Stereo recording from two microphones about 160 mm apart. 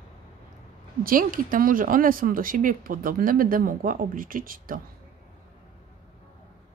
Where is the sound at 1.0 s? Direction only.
60° right (ahead or behind).